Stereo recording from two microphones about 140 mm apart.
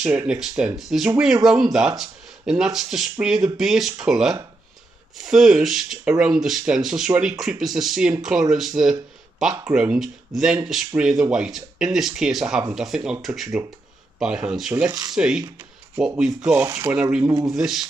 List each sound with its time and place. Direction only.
0.0 s speech: 10° right (ahead or behind)
14.9 s speech: 25° right (ahead or behind)
15.1 s speech: 5° right (ahead or behind)
16.5 s speech: 20° right (ahead or behind); by 17.8 s 5° right (ahead or behind)